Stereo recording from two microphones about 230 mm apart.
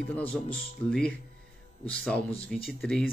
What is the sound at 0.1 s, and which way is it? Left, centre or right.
Speech, centre.